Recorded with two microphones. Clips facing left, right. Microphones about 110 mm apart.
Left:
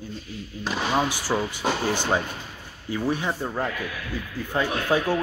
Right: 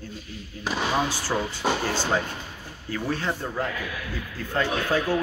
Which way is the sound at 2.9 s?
15° left (ahead or behind).